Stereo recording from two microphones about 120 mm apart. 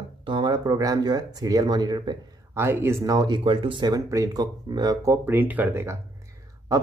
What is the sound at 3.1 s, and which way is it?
Speech, 40° right (ahead or behind).